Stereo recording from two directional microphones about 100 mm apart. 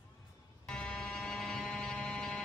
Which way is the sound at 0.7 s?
10° left (ahead or behind).